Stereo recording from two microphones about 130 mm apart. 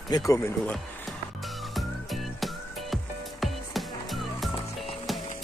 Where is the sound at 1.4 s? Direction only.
Centre (ahead or behind).